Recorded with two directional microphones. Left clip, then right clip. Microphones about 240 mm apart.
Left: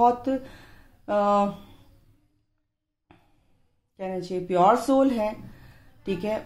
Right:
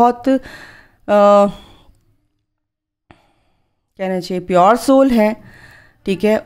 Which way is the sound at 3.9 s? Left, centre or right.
Right.